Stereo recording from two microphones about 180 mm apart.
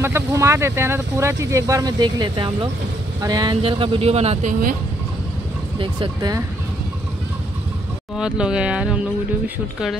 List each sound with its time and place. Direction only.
0.0 s speech: 15° right (ahead or behind); by 4.7 s 45° right (ahead or behind)
5.8 s speech: 25° right (ahead or behind)
8.2 s speech: 5° right (ahead or behind)